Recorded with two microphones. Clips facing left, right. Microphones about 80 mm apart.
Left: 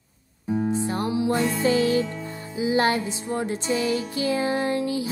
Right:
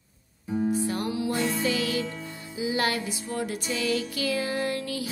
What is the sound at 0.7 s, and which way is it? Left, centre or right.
Music, left.